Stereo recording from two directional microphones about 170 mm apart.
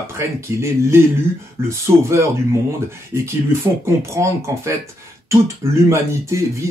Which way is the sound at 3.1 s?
15° right (ahead or behind).